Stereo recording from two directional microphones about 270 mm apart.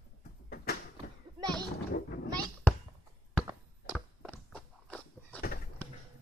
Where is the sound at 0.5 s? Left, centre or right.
Left.